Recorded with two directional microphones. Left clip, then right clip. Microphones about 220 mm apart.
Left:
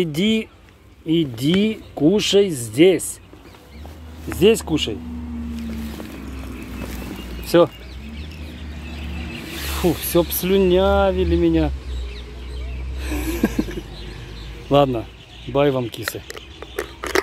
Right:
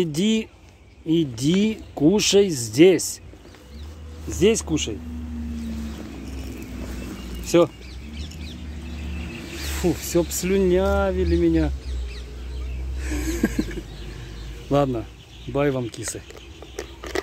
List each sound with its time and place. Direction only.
0.0 s speech: 5° right (ahead or behind)
4.4 s speech: centre (ahead or behind)
7.5 s speech: centre (ahead or behind)
9.8 s speech: centre (ahead or behind)
13.1 s a sound: 5° left (ahead or behind)
14.7 s speech: 5° left (ahead or behind)
16.1 s a sound: 35° left (ahead or behind)